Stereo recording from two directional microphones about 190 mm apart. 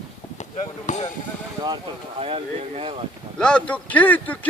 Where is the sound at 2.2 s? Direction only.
30° right (ahead or behind).